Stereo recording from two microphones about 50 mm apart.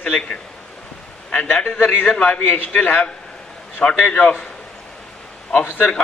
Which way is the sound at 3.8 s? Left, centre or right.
Left.